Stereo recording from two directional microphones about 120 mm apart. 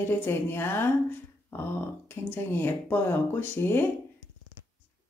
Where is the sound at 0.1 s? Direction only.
20° left (ahead or behind).